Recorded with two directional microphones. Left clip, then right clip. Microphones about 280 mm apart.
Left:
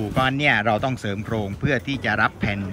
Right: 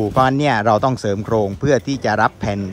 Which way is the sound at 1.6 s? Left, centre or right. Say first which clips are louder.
Right 6 dB; centre.